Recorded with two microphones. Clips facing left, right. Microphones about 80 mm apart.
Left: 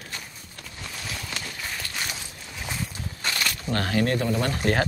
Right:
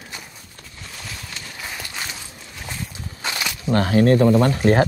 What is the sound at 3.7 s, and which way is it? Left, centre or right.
Speech, right.